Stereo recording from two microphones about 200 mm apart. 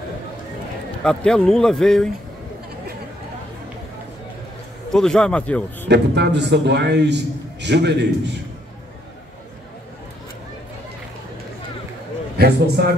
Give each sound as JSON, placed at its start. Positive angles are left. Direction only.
{"t": 1.0, "sound": "speech", "side_deg": 5}
{"t": 4.9, "sound": "speech", "side_deg": 5}
{"t": 5.9, "sound": "a man's voice", "side_deg": -60}
{"t": 12.4, "sound": "a man's voice", "side_deg": -55}